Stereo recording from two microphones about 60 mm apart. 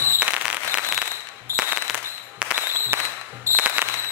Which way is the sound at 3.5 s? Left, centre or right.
Right.